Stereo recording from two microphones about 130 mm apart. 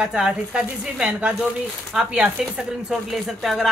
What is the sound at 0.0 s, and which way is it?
Speech, 5° right (ahead or behind).